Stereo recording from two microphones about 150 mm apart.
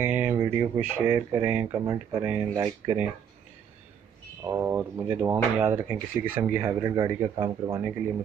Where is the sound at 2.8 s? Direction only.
10° right (ahead or behind).